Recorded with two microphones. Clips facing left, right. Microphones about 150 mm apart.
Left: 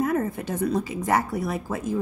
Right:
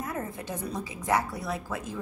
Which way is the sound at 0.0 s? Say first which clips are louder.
Left 10 dB; 65° left (ahead or behind).